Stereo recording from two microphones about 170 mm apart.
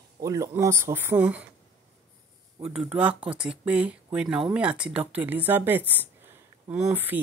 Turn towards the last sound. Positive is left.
turn(degrees=-10)  # may be behind; listen again after turning